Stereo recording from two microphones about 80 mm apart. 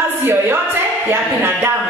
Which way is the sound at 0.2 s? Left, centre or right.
Right.